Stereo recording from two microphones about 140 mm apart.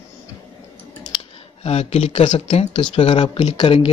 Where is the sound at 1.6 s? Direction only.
45° left (ahead or behind).